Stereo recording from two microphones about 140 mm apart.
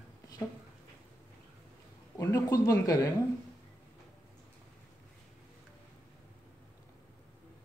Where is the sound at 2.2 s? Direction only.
25° left (ahead or behind).